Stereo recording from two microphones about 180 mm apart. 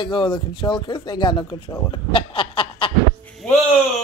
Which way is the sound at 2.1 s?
30° left (ahead or behind).